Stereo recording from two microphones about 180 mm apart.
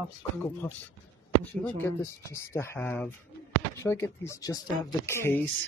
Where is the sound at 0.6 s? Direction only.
10° left (ahead or behind).